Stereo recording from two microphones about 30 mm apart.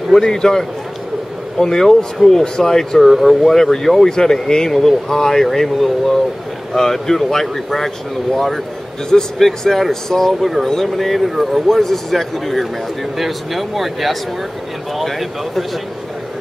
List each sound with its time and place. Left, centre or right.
0.1 s speech: centre
4.1 s speech: left
10.4 s speech: centre
11.2 s speech: centre
11.7 s speech: centre